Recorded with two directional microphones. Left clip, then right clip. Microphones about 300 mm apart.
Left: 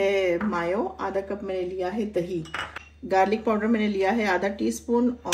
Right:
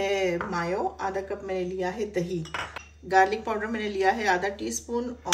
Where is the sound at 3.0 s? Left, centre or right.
Centre.